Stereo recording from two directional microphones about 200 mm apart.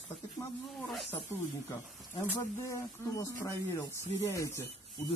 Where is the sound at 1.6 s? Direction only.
15° left (ahead or behind).